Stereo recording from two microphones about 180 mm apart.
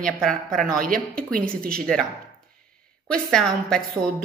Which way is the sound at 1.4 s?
5° left (ahead or behind).